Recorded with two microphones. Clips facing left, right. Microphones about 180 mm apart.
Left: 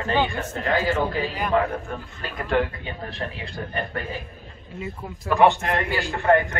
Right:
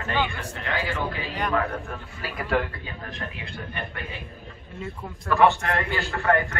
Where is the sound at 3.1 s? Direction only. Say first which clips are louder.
Left 4 dB; 30° left (ahead or behind).